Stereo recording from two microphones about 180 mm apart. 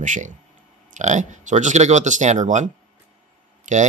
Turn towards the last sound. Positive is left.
turn(degrees=-45)  # may be behind; listen again after turning